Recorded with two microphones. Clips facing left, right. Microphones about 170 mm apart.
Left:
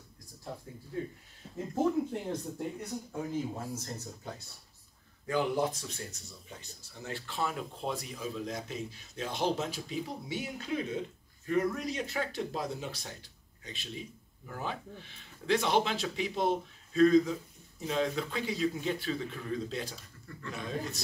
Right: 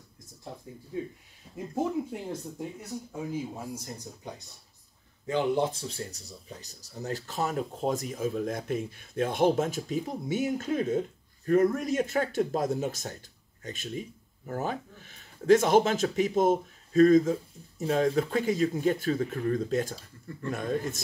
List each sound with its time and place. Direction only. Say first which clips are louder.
3.1 s speech: right 1 dB; 10° right (ahead or behind); by 21.0 s 50° right (ahead or behind)